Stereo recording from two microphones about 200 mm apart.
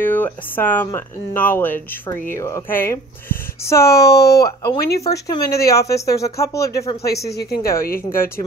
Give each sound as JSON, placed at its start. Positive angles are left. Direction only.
{"t": 0.0, "sound": "speech", "side_deg": 10}
{"t": 4.7, "sound": "a woman's voice", "side_deg": 50}
{"t": 5.0, "sound": "speech", "side_deg": 15}
{"t": 7.2, "sound": "a woman's voice", "side_deg": 55}
{"t": 8.1, "sound": "speech", "side_deg": 10}